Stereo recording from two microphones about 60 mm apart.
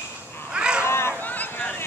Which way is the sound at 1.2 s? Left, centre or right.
Left.